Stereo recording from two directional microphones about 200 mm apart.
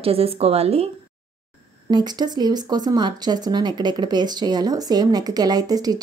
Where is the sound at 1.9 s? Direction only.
20° right (ahead or behind).